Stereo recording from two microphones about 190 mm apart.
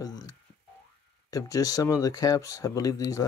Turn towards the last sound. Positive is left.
turn(degrees=15)  # may be behind; listen again after turning